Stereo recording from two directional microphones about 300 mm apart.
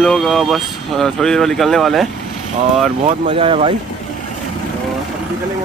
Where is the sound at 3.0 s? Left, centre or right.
Centre.